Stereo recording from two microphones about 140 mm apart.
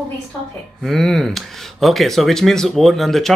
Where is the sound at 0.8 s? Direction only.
5° left (ahead or behind).